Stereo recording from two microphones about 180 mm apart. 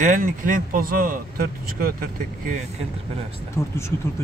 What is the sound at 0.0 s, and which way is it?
Speech, 45° right (ahead or behind).